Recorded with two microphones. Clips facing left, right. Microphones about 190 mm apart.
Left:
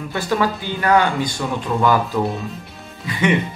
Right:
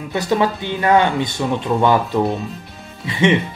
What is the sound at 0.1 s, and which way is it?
Speech, 20° right (ahead or behind).